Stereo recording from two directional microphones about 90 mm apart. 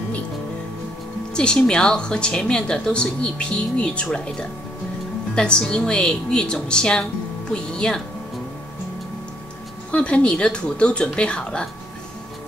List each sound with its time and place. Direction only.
1.3 s a woman's voice: 10° left (ahead or behind)
9.8 s a woman's voice: 15° left (ahead or behind)